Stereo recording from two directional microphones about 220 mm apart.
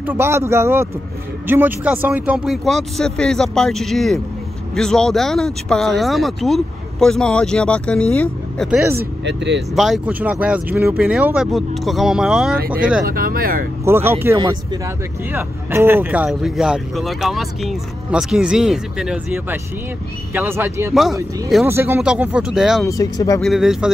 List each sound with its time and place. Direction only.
0.0 s speech: 10° right (ahead or behind); by 8.6 s 5° left (ahead or behind)
8.6 s speech: 5° right (ahead or behind)
8.9 s speech: 50° right (ahead or behind)
9.8 s speech: centre (ahead or behind)
12.5 s speech: 40° right (ahead or behind)
13.8 s speech: 10° right (ahead or behind)
20.9 s speech: centre (ahead or behind)
22.8 s speech: 15° left (ahead or behind)
23.4 s speech: centre (ahead or behind)